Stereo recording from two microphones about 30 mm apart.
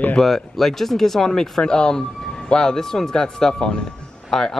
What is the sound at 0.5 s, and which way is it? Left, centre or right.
Speech, centre.